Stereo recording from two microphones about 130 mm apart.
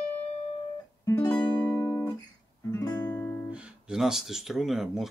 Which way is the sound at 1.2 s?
35° left (ahead or behind).